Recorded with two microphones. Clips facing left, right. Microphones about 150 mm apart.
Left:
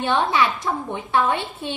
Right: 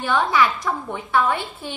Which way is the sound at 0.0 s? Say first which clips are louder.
Even; 25° left (ahead or behind).